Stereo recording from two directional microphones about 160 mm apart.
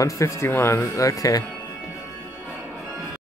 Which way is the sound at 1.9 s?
20° left (ahead or behind).